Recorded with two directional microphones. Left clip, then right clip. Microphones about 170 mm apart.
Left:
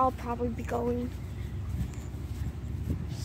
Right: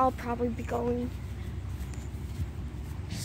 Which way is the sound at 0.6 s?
Centre (ahead or behind).